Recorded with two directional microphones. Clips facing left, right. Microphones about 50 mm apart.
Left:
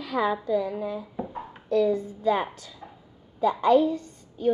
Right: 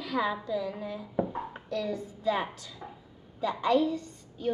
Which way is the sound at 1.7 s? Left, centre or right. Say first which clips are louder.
Left 10 dB; left.